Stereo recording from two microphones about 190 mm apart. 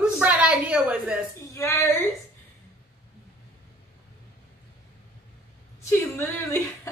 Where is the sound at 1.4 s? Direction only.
15° left (ahead or behind).